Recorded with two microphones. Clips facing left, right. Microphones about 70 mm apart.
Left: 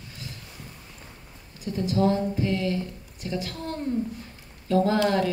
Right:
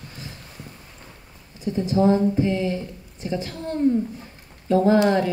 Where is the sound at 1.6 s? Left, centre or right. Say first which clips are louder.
Right 4 dB; right.